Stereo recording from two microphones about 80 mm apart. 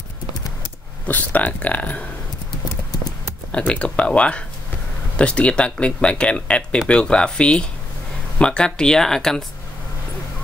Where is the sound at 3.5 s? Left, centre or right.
Centre.